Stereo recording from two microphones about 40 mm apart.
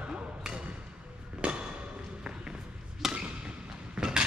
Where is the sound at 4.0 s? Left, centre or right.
Right.